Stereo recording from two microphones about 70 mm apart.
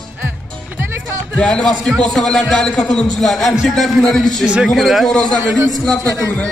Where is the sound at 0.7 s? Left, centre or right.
Right.